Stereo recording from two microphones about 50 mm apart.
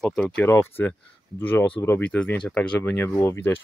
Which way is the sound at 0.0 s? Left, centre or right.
Centre.